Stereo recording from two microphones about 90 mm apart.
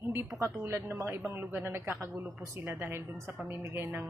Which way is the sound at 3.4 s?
25° right (ahead or behind).